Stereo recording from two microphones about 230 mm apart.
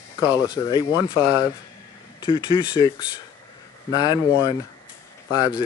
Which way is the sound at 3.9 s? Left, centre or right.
Centre.